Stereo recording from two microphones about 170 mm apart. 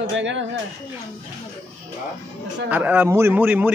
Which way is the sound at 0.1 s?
90° right.